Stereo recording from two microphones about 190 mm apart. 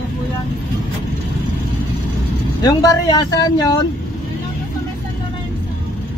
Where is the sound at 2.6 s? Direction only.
20° left (ahead or behind).